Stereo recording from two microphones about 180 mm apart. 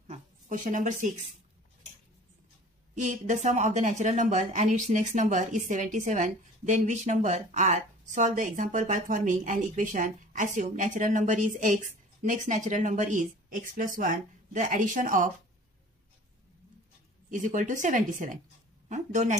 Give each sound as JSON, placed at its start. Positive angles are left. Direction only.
{"t": 0.0, "sound": "a sound", "side_deg": -40}
{"t": 2.9, "sound": "a woman's voice", "side_deg": -40}
{"t": 17.3, "sound": "a woman's voice", "side_deg": -45}